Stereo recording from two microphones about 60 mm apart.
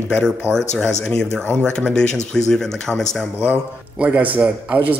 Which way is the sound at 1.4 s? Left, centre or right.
Centre.